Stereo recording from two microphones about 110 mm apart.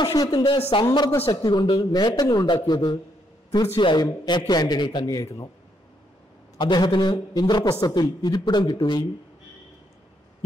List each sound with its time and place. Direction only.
0.0 s speech: 40° left (ahead or behind)
0.5 s a man's voice: 55° left (ahead or behind)
1.3 s speech: 40° left (ahead or behind)
5.1 s speech: 30° left (ahead or behind)
6.6 s speech: 45° left (ahead or behind)